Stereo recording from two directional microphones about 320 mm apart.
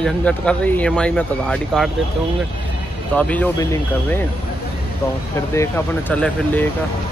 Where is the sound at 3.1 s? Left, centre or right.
Centre.